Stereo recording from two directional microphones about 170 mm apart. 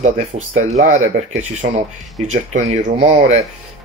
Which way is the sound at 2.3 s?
45° right (ahead or behind).